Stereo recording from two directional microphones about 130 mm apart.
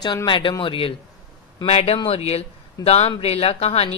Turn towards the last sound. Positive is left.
turn(degrees=50)  # may be behind; listen again after turning